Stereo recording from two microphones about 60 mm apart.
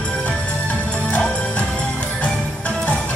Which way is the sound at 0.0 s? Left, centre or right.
Centre.